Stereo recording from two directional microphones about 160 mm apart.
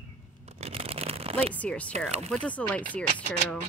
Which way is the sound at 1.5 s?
10° left (ahead or behind).